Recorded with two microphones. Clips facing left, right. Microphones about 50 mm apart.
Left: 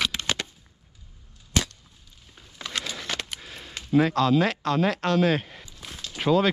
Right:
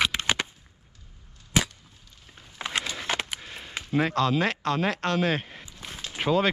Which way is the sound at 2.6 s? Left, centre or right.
Right.